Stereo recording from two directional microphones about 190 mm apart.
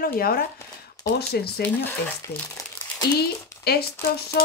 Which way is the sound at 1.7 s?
10° left (ahead or behind).